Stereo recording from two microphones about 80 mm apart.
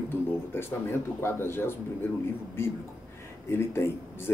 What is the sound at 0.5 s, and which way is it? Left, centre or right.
Speech, left.